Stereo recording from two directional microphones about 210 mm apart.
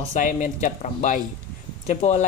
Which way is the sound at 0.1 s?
35° left (ahead or behind).